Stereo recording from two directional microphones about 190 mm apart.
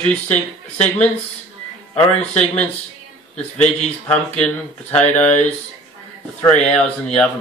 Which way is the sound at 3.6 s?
35° left (ahead or behind).